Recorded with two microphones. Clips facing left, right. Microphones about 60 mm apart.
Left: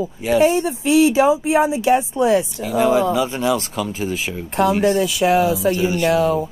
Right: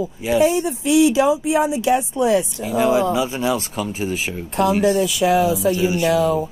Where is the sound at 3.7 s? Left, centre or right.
Right.